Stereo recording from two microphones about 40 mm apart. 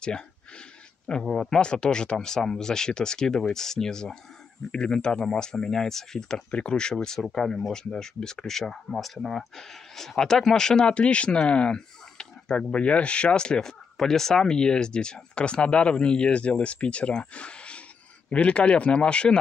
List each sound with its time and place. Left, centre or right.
1.3 s speech: centre